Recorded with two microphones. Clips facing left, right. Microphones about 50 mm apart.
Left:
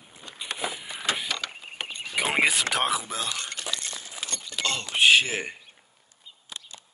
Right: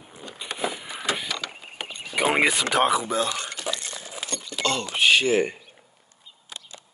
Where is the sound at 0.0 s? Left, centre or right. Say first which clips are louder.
Right 5 dB; right.